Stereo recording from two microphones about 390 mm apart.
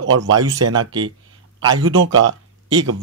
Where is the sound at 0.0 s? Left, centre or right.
Right.